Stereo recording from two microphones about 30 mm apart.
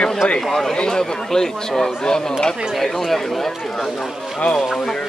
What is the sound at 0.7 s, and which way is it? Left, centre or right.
Speech, left.